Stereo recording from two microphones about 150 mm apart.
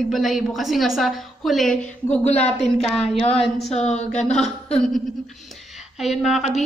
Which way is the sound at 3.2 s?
40° left (ahead or behind).